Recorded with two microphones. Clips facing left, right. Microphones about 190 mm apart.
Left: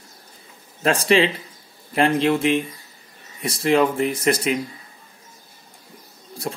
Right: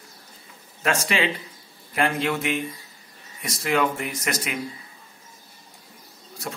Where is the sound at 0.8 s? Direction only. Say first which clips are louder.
Left 6 dB; 30° left (ahead or behind).